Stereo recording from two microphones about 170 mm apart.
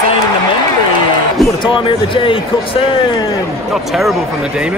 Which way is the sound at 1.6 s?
30° left (ahead or behind).